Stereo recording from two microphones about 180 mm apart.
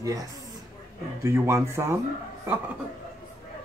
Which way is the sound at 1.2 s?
15° right (ahead or behind).